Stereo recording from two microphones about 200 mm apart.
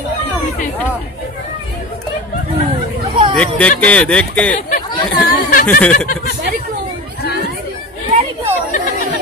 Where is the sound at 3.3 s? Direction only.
5° left (ahead or behind).